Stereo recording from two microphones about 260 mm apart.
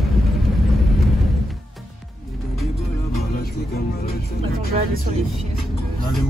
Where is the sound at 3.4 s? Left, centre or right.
Left.